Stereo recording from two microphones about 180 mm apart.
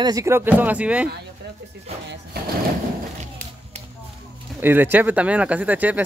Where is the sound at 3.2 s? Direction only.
40° right (ahead or behind).